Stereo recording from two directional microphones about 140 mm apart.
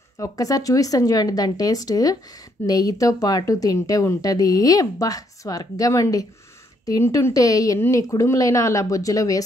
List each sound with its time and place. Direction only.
0.2 s speech: 25° left (ahead or behind)